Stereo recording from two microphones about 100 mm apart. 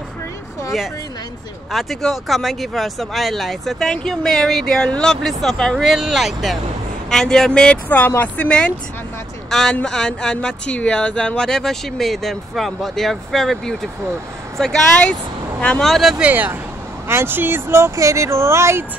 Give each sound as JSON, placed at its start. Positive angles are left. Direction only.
{"t": 1.7, "sound": "speech", "side_deg": 0}
{"t": 16.3, "sound": "speech", "side_deg": -15}